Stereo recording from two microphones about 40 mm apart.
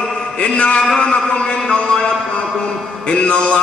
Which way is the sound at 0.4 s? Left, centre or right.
Left.